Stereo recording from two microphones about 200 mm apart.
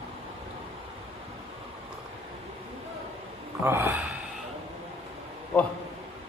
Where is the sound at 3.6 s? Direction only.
10° right (ahead or behind).